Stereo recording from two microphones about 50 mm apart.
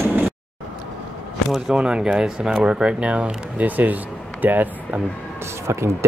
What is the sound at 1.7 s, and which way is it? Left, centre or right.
Speech, centre.